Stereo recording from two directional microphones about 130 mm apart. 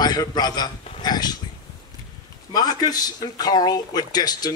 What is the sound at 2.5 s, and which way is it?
Speech, 30° left (ahead or behind).